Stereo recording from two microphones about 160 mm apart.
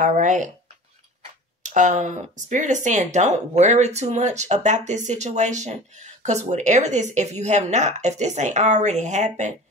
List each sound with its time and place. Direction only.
0.0 s speech: 50° right (ahead or behind)
1.6 s speech: 50° right (ahead or behind)